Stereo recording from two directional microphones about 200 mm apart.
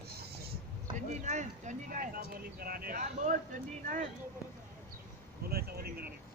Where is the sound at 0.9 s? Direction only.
35° right (ahead or behind).